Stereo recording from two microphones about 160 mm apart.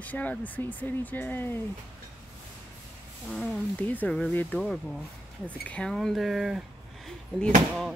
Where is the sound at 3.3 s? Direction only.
5° left (ahead or behind).